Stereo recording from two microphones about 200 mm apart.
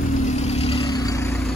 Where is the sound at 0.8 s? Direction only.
15° left (ahead or behind).